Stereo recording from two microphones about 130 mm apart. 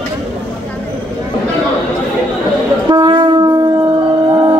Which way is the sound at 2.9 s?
35° right (ahead or behind).